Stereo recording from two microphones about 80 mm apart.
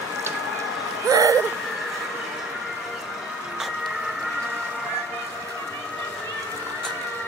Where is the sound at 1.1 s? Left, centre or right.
Right.